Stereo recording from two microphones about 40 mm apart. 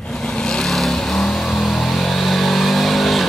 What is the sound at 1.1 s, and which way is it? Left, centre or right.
Vehicle, centre.